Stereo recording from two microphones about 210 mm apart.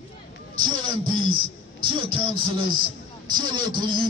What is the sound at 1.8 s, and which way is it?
Speech, 25° right (ahead or behind).